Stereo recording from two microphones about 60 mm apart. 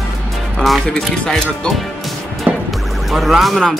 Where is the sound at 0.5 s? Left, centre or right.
Centre.